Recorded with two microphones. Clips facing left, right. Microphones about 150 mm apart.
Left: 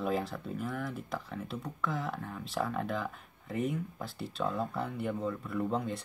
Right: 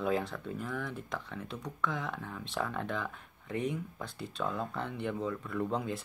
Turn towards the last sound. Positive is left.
turn(degrees=0)  # may be behind; listen again after turning